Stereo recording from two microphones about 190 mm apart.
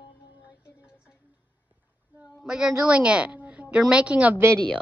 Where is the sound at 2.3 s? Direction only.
5° right (ahead or behind).